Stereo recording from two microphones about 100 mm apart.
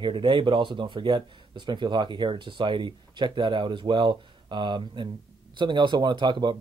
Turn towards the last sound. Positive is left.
turn(degrees=-50)  # may be behind; listen again after turning